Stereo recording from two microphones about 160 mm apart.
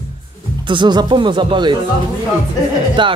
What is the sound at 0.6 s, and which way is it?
Speech, 30° right (ahead or behind).